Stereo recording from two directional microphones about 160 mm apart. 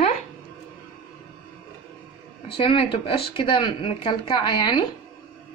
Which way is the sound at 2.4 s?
35° left (ahead or behind).